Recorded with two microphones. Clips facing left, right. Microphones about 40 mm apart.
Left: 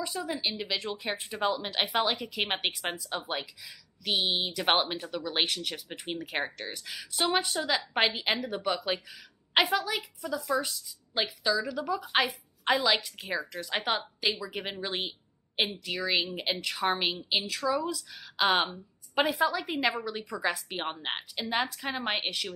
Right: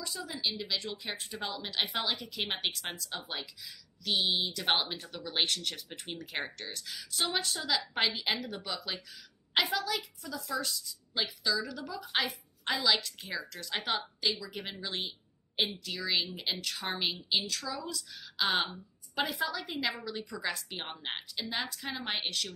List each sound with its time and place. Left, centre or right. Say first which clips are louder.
0.0 s a woman's voice: left 4 dB; left
0.9 s a woman's voice: left 5 dB; centre
4.5 s a woman's voice: left 4 dB; left
5.0 s a woman's voice: left 3 dB; centre
18.7 s a woman's voice: left 3 dB; left